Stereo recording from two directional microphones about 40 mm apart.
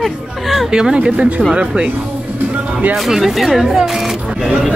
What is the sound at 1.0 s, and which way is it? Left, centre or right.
Speech, right.